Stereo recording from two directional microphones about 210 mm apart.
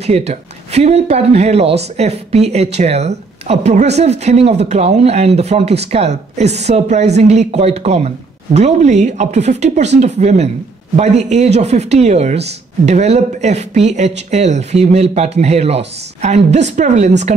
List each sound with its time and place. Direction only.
0.0 s speech: 30° right (ahead or behind)